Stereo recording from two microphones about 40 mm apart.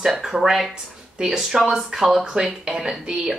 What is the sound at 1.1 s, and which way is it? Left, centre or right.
A woman's voice, centre.